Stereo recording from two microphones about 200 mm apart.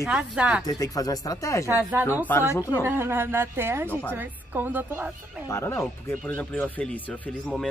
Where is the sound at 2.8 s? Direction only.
10° right (ahead or behind).